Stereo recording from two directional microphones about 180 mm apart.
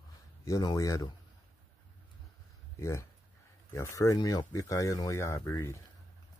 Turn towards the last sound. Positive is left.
turn(degrees=15)  # may be behind; listen again after turning